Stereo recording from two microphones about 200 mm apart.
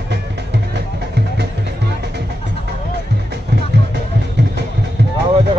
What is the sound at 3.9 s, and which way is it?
Music, 55° right (ahead or behind).